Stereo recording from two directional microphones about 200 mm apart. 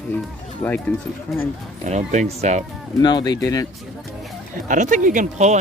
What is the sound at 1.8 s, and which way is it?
Speech, 35° right (ahead or behind).